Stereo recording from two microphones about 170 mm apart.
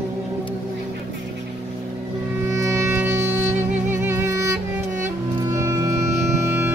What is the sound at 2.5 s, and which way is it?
Music, 15° right (ahead or behind).